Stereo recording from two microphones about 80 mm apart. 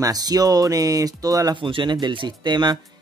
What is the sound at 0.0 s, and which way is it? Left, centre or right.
Speech, right.